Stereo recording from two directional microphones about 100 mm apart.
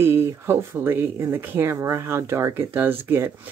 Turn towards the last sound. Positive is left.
turn(degrees=-20)  # may be behind; listen again after turning